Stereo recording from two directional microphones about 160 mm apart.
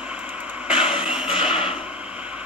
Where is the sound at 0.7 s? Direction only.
5° right (ahead or behind).